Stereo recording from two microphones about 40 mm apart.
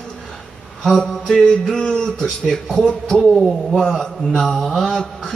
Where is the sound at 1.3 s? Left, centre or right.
Centre.